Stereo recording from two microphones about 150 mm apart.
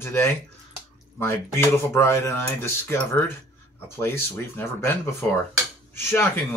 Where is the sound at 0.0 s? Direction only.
15° left (ahead or behind).